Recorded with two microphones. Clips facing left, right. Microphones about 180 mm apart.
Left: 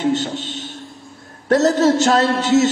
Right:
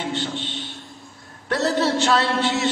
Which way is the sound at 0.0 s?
40° left (ahead or behind).